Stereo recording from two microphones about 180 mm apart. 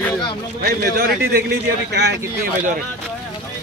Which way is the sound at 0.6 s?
55° right (ahead or behind).